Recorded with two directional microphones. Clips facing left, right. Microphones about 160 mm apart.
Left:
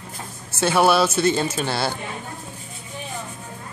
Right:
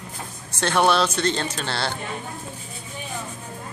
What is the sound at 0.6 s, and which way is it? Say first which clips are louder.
Speech: left 2 dB; 10° left (ahead or behind).